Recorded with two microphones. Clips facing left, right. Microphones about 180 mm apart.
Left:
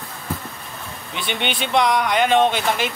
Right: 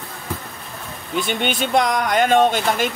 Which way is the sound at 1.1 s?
45° right (ahead or behind).